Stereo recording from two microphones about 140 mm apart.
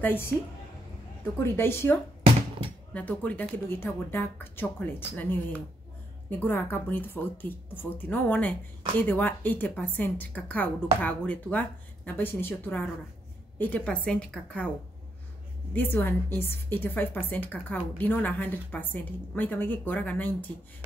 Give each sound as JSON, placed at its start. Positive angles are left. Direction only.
{"t": 0.0, "sound": "a woman's voice", "side_deg": 15}
{"t": 1.4, "sound": "a woman's voice", "side_deg": 15}
{"t": 15.7, "sound": "a woman's voice", "side_deg": 15}